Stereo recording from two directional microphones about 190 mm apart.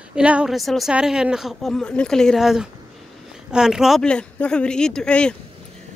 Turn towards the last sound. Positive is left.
turn(degrees=5)  # may be behind; listen again after turning